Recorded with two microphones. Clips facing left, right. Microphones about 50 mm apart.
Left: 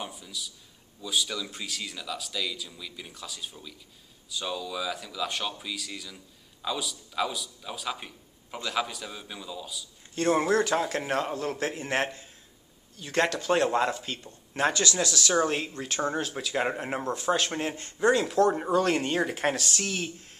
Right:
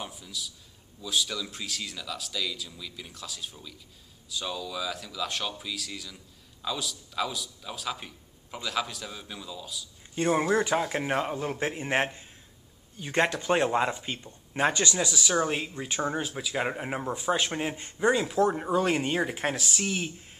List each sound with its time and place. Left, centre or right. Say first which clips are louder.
0.0 s a sound: even; centre
1.0 s speech: even; centre
10.1 s speech: left 1 dB; centre
15.0 s speech: left 1 dB; centre